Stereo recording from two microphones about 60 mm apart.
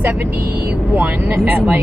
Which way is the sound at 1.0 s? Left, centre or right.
Right.